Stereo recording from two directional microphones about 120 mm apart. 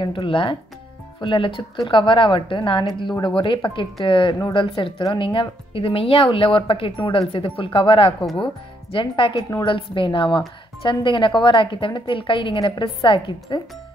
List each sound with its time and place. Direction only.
0.0 s speech: 45° left (ahead or behind)
8.2 s speech: 5° left (ahead or behind)
8.9 s speech: 45° left (ahead or behind)